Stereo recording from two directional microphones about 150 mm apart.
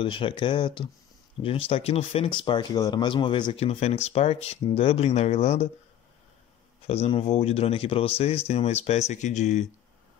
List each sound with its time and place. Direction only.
0.0 s speech: 35° left (ahead or behind)
3.5 s speech: 45° left (ahead or behind)
6.9 s speech: 40° left (ahead or behind)